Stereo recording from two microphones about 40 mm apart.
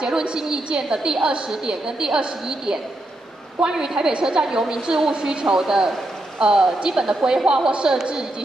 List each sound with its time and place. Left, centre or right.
0.0 s a woman's voice: right
5.1 s a woman's voice: right